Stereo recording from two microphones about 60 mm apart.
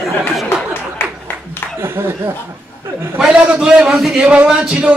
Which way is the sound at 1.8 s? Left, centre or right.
Right.